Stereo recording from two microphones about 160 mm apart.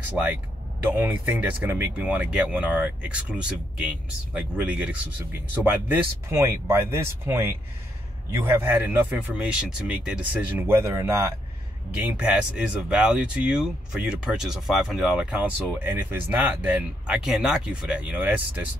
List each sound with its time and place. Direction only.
0.2 s speech: 10° right (ahead or behind)